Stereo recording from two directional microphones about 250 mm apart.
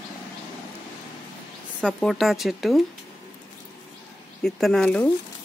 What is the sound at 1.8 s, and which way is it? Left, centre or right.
Speech, centre.